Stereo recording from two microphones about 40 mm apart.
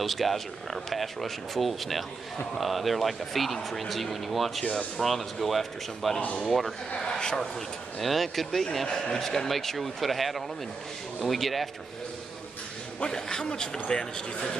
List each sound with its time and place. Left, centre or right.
0.0 s speech: centre
7.0 s speech: centre
8.0 s speech: centre
8.8 s speech: centre
13.0 s speech: centre